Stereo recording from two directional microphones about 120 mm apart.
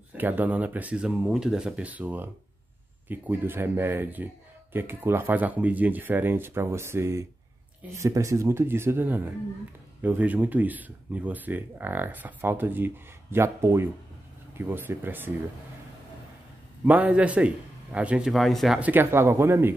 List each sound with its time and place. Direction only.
0.2 s speech: 15° right (ahead or behind)
16.8 s speech: 15° right (ahead or behind)
18.3 s speech: centre (ahead or behind)
18.8 s speech: 15° right (ahead or behind)